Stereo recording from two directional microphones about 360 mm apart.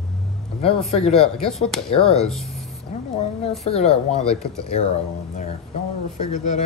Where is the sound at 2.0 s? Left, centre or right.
Centre.